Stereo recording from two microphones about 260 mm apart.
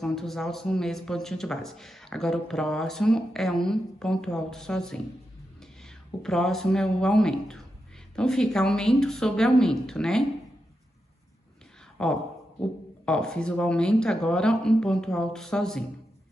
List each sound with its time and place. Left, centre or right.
0.0 s a man's voice: centre
6.2 s a man's voice: centre
12.0 s a man's voice: centre